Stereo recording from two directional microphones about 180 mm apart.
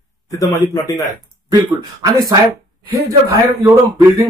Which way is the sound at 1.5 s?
20° right (ahead or behind).